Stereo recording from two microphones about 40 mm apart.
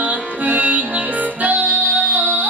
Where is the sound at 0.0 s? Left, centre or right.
Right.